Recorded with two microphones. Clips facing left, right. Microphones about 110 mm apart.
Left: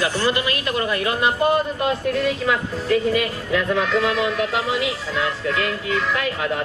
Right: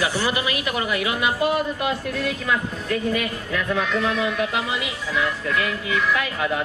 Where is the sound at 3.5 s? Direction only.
60° left (ahead or behind).